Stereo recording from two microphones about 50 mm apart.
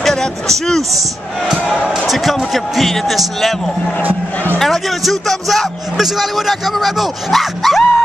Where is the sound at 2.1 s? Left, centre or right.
Centre.